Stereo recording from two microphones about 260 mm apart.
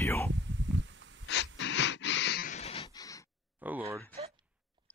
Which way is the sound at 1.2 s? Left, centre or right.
Left.